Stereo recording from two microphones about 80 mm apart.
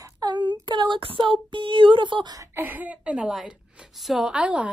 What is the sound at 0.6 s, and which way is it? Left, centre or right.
Child singing, right.